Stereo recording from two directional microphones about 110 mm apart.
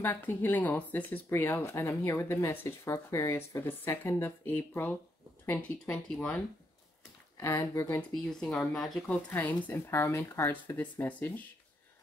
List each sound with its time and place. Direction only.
0.0 s speech: 15° left (ahead or behind)
7.3 s speech: 25° left (ahead or behind)
8.2 s speech: 5° left (ahead or behind)
9.3 s speech: 15° left (ahead or behind)